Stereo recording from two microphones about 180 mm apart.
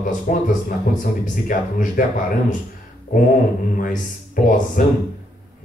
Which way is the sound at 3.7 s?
50° left (ahead or behind).